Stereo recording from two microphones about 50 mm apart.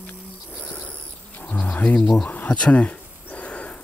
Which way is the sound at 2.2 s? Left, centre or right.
Left.